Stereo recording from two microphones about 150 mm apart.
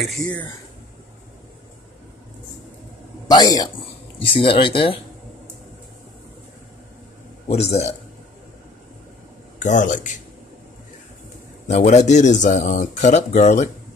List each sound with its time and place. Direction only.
0.0 s speech: centre (ahead or behind)
3.3 s speech: 25° left (ahead or behind)
4.2 s speech: 35° left (ahead or behind)
7.4 s speech: 45° left (ahead or behind)
9.6 s speech: 55° left (ahead or behind)
11.6 s speech: 50° left (ahead or behind)